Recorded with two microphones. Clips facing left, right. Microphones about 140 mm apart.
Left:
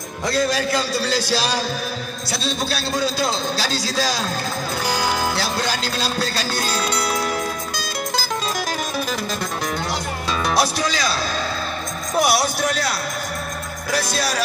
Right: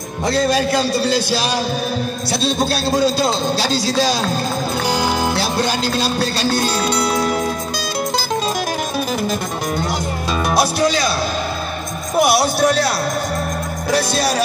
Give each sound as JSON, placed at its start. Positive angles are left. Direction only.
{"t": 1.0, "sound": "a man's voice", "side_deg": -20}
{"t": 2.6, "sound": "a man's voice", "side_deg": -30}
{"t": 4.8, "sound": "music", "side_deg": -25}
{"t": 6.2, "sound": "speech", "side_deg": -25}
{"t": 10.4, "sound": "speech", "side_deg": -55}
{"t": 12.2, "sound": "speech", "side_deg": -60}
{"t": 12.6, "sound": "a man's voice", "side_deg": -30}